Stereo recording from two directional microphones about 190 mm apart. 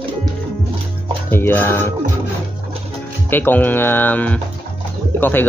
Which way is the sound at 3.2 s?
10° left (ahead or behind).